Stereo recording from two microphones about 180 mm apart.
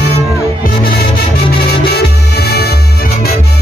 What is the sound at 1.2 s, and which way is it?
Music, 60° left (ahead or behind).